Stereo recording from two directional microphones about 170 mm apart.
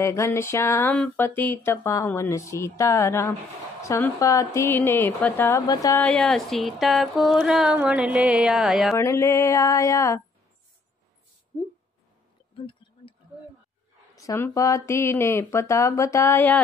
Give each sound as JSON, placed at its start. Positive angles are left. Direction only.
{"t": 0.0, "sound": "speech", "side_deg": 15}
{"t": 6.0, "sound": "speech", "side_deg": 5}
{"t": 8.9, "sound": "speech", "side_deg": 15}
{"t": 14.1, "sound": "speech", "side_deg": 20}